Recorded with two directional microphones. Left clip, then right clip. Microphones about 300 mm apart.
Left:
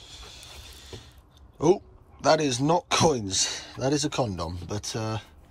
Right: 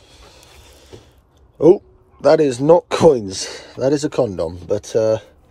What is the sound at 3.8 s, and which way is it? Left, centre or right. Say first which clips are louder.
Speech: right 10 dB; right.